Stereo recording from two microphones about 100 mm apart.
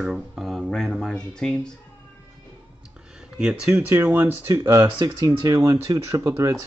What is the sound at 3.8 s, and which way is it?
Speech, 20° right (ahead or behind).